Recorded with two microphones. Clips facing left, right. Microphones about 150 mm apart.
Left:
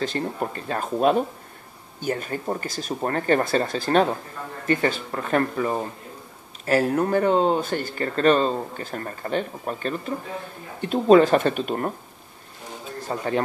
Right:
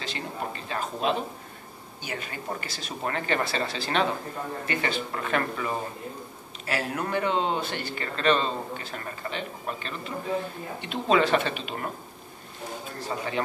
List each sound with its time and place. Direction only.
0.0 s speech: 50° left (ahead or behind)
13.1 s speech: 45° left (ahead or behind)